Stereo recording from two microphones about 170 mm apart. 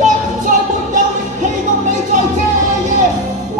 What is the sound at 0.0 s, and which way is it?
Music, 45° right (ahead or behind).